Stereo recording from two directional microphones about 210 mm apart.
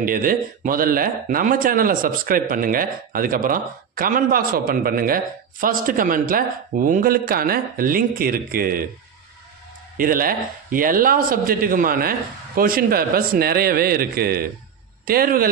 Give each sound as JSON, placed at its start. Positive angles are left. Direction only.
{"t": 0.0, "sound": "speech", "side_deg": -40}
{"t": 9.9, "sound": "speech", "side_deg": -40}